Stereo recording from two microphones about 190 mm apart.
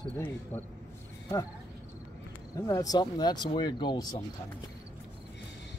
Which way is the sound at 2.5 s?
20° left (ahead or behind).